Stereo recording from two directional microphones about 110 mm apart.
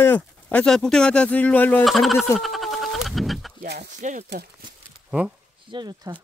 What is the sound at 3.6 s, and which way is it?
Speech, 90° right.